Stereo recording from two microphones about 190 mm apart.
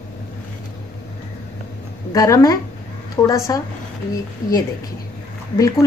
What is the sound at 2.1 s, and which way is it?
A woman's voice, 20° left (ahead or behind).